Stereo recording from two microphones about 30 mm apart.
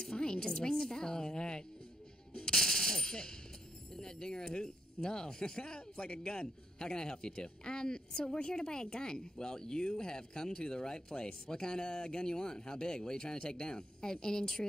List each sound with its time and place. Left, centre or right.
0.1 s speech: left
2.5 s machine gun: centre
3.9 s speech: left